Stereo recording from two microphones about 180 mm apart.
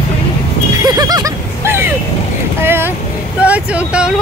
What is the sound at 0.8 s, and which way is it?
Music, 20° right (ahead or behind).